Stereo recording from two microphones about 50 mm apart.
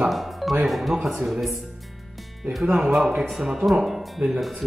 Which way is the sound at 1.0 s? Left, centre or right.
Centre.